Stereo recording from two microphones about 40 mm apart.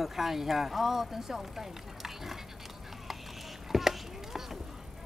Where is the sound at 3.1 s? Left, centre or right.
Centre.